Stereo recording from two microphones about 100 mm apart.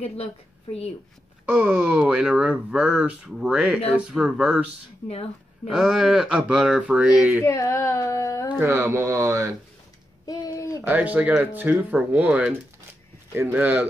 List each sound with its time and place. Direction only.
1.4 s speech: 10° right (ahead or behind)
5.7 s speech: 5° right (ahead or behind)
7.4 s speech: 30° left (ahead or behind)
8.6 s speech: 30° right (ahead or behind)
10.2 s a sound: 40° left (ahead or behind)
10.8 s speech: 15° right (ahead or behind)